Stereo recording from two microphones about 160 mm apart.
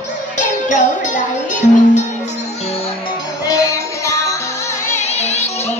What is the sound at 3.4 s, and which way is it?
Music, 20° left (ahead or behind).